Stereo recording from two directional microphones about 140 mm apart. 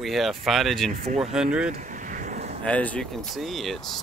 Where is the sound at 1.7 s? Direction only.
65° right (ahead or behind).